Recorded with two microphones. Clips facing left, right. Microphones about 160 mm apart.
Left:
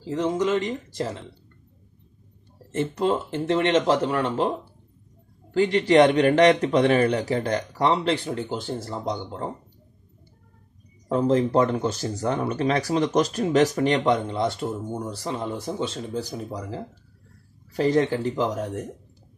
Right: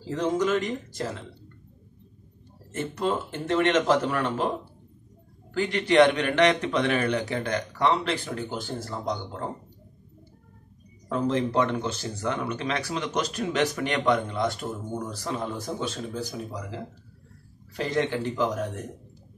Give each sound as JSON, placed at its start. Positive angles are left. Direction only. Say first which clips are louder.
{"t": 0.1, "sound": "speech", "louder": "left 1 dB", "side_deg": 20}
{"t": 2.7, "sound": "speech", "louder": "left 4 dB", "side_deg": 30}
{"t": 5.5, "sound": "speech", "louder": "left 5 dB", "side_deg": 30}
{"t": 11.1, "sound": "speech", "louder": "left 5 dB", "side_deg": 35}
{"t": 17.7, "sound": "speech", "louder": "left 5 dB", "side_deg": 35}